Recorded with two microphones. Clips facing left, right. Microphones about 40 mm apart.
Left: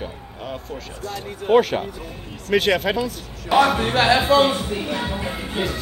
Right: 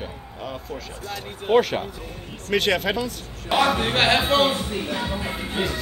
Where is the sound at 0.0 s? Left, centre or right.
Centre.